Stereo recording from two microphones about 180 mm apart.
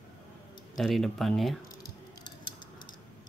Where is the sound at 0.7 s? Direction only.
Centre (ahead or behind).